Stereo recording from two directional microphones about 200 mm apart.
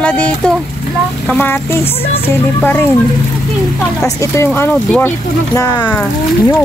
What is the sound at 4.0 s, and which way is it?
Speech, 15° left (ahead or behind).